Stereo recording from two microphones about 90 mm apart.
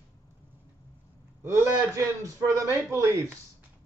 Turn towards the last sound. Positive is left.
turn(degrees=-30)  # may be behind; listen again after turning